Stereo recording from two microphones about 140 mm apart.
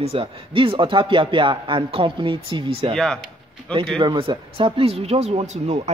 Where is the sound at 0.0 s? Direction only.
45° right (ahead or behind).